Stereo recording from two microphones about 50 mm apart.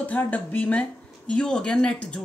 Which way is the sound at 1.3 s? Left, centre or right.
Centre.